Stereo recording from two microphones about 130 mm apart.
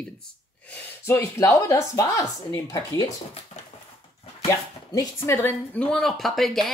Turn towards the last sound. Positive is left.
turn(degrees=0)  # may be behind; listen again after turning